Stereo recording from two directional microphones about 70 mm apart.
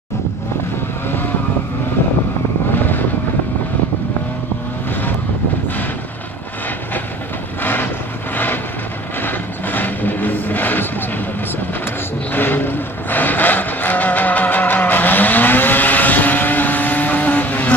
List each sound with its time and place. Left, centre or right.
2.7 s vehicle: left
7.6 s vehicle: left
9.2 s vehicle: left
12.3 s vehicle: left